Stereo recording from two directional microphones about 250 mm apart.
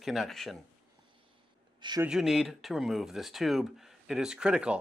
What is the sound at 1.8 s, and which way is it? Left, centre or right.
Speech, centre.